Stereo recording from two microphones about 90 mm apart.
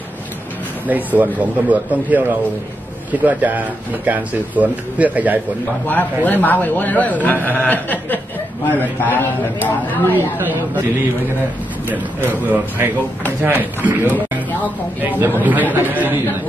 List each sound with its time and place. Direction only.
0.8 s speech: 20° right (ahead or behind)
6.2 s a man's voice: 20° left (ahead or behind)
10.4 s speech: 20° right (ahead or behind)
11.9 s speech: 20° right (ahead or behind)